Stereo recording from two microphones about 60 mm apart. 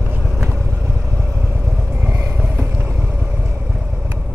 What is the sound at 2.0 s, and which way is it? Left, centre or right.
Vehicle, right.